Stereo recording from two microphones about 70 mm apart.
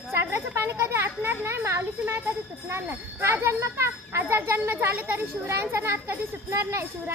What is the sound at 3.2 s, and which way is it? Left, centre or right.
Speech, right.